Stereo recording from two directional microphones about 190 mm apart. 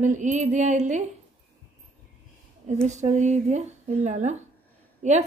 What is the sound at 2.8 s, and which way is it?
Speech, 40° right (ahead or behind).